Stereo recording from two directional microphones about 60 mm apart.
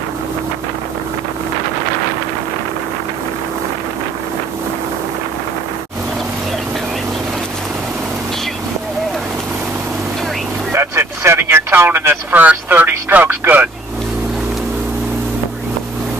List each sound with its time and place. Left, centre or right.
10.7 s speech: right